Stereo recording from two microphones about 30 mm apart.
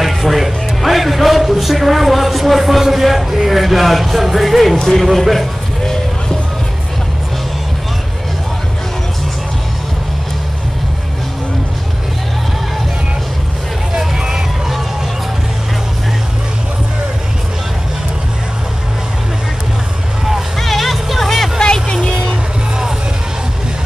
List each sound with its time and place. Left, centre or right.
0.0 s a man's voice: centre
3.4 s music: centre
4.7 s speech: centre
5.0 s music: centre
13.9 s vehicle: centre
20.5 s music: centre
21.9 s vehicle: centre